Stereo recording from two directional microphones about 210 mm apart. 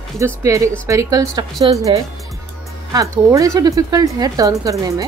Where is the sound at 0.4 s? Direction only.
15° right (ahead or behind).